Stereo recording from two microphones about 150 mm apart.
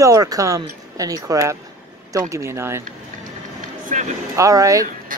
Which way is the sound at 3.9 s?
50° right (ahead or behind).